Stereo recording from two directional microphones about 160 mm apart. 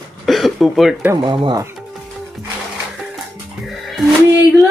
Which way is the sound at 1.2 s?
30° right (ahead or behind).